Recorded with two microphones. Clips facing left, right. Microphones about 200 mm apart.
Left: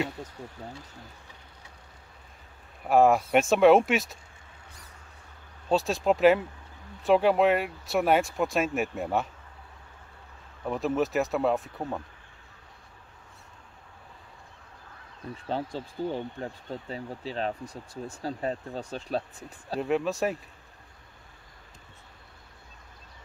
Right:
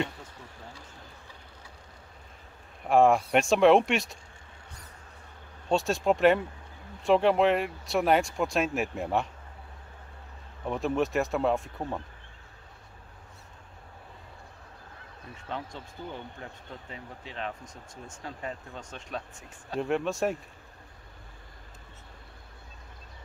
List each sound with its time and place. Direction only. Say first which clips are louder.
2.8 s speech: left 1 dB; centre (ahead or behind)
5.7 s speech: left 1 dB; centre (ahead or behind)
10.6 s speech: left 1 dB; centre (ahead or behind)
15.3 s speech: left 6 dB; 35° left (ahead or behind)
19.8 s speech: left 1 dB; centre (ahead or behind)